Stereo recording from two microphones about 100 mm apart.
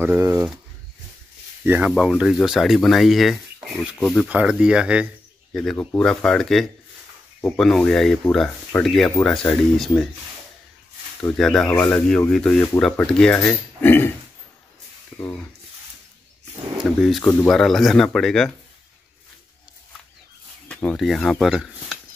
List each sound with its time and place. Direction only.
1.6 s speech: 20° right (ahead or behind)
1.9 s speech: 5° right (ahead or behind)
4.3 s speech: 15° right (ahead or behind)
5.5 s speech: 5° left (ahead or behind)
11.3 s speech: 5° left (ahead or behind)
11.7 s speech: 15° left (ahead or behind)
13.4 s speech: 20° left (ahead or behind)
15.1 s speech: 15° left (ahead or behind)
16.7 s speech: 5° right (ahead or behind)
17.2 s speech: 20° left (ahead or behind)
17.5 s speech: 5° left (ahead or behind)
20.6 s speech: 10° left (ahead or behind)
21.5 s a sound: 5° right (ahead or behind)